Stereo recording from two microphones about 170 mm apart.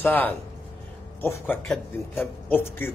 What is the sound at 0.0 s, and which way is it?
A man's voice, 10° left (ahead or behind).